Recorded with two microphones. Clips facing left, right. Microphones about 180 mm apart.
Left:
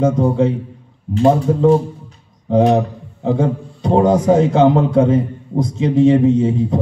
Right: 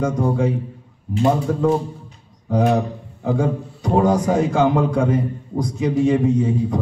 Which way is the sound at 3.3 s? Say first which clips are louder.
Left 3 dB; 25° left (ahead or behind).